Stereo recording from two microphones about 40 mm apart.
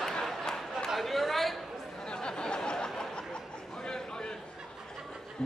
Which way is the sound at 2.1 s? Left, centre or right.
Left.